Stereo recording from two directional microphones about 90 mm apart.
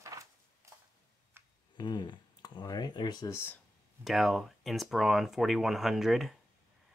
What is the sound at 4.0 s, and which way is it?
Speech, centre (ahead or behind).